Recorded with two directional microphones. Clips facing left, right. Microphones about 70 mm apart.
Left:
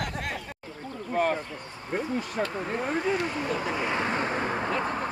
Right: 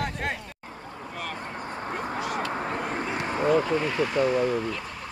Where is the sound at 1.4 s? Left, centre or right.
Right.